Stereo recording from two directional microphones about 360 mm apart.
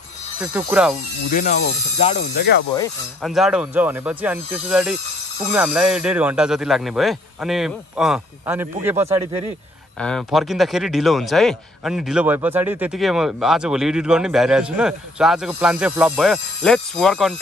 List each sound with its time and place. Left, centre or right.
0.4 s speech: centre
1.3 s speech: left
3.2 s speech: centre